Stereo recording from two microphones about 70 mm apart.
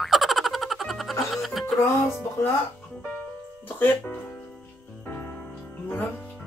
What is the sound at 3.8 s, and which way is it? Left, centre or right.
Speech, left.